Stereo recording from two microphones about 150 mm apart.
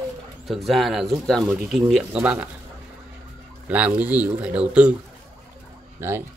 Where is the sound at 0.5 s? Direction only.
Centre (ahead or behind).